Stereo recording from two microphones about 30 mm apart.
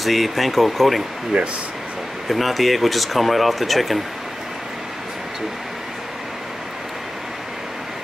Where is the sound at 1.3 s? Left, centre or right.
Right.